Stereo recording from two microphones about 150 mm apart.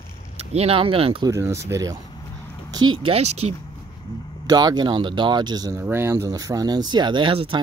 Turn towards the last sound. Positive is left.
turn(degrees=-35)  # may be behind; listen again after turning